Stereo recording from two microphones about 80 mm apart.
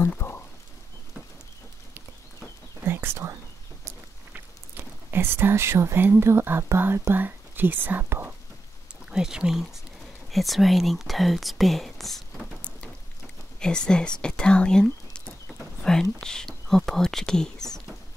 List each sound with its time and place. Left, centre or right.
0.0 s a sound: left
2.9 s whispering: right
4.3 s speech: right
9.1 s speech: centre
13.6 s speech: centre